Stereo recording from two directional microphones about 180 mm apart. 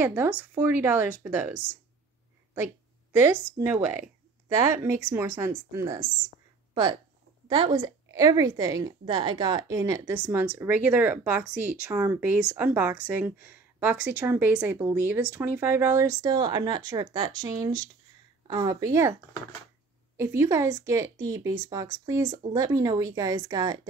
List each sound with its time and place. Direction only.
0.0 s a woman's voice: 10° right (ahead or behind)
20.2 s a woman's voice: 15° right (ahead or behind)